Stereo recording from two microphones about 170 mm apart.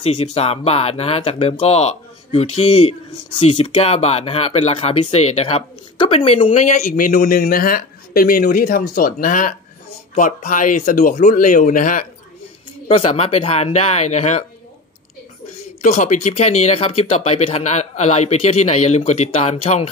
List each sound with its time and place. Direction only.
0.0 s speech: 35° left (ahead or behind)
12.8 s speech: 35° left (ahead or behind)
15.8 s speech: 45° left (ahead or behind)